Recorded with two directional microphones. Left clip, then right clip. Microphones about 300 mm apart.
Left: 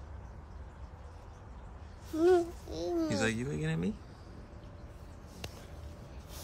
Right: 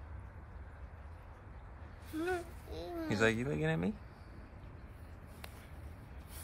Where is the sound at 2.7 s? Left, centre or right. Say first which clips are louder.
Left 8 dB; left.